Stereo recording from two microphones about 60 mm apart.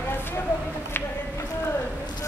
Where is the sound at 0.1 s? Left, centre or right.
Left.